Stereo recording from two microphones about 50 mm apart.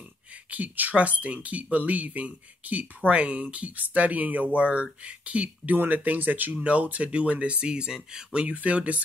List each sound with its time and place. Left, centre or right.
0.5 s speech: right
6.5 s speech: right
8.5 s speech: right